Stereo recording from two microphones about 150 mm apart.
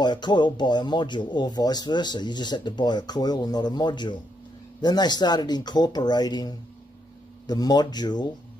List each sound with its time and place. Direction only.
0.0 s speech: 30° left (ahead or behind)